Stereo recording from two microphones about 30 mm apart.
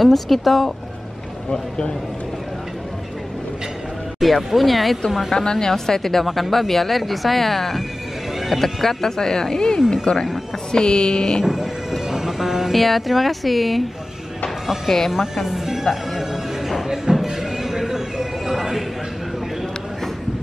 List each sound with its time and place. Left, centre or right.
0.0 s speech: centre
1.5 s speech: left
4.2 s speech: centre
5.3 s speech: left
6.2 s speech: centre; by 9.8 s left
10.1 s speech: left
11.4 s train: centre
12.1 s music: centre
12.7 s speech: centre
15.0 s speech: centre
15.4 s music: centre